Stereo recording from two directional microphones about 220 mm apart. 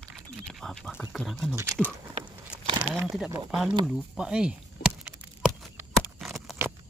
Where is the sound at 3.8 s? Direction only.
5° right (ahead or behind).